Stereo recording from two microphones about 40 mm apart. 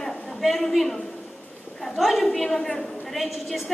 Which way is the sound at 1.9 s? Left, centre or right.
Centre.